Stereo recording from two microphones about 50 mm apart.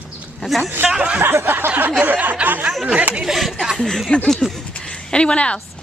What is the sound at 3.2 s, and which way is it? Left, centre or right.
Speech, centre.